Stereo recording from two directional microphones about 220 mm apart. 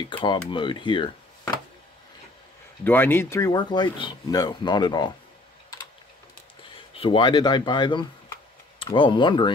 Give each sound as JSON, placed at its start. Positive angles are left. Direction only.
{"t": 0.5, "sound": "speech", "side_deg": 20}
{"t": 2.8, "sound": "speech", "side_deg": 10}
{"t": 6.9, "sound": "speech", "side_deg": 25}